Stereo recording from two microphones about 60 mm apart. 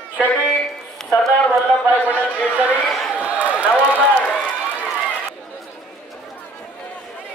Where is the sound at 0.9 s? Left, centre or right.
Centre.